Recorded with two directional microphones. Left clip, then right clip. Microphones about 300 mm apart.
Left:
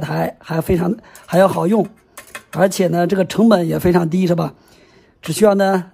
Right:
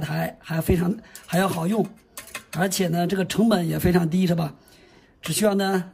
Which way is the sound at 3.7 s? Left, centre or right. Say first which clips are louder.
Left 7 dB; centre.